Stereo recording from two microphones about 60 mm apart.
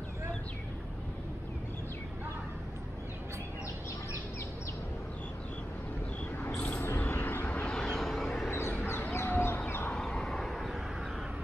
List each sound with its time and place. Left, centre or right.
7.1 s vehicle: left
7.6 s vehicle: centre
8.5 s a sound: left
9.1 s chicken: left
9.9 s vehicle: centre